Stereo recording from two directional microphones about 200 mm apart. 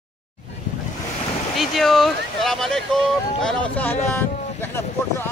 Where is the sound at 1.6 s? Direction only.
Centre (ahead or behind).